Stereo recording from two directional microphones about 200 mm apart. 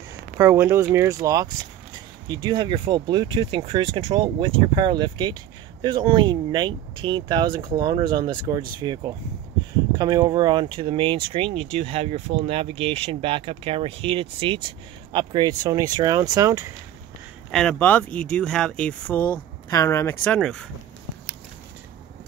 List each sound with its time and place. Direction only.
0.4 s speech: 15° right (ahead or behind)
17.5 s speech: 5° left (ahead or behind)